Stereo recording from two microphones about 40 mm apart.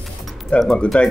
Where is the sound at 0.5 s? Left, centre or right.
Left.